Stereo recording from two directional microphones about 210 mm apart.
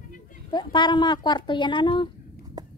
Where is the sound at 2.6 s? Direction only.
20° right (ahead or behind).